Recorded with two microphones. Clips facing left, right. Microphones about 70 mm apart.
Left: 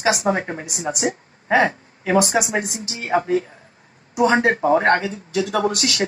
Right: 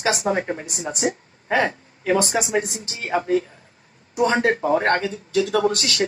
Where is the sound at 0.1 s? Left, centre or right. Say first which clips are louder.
Left 1 dB; left.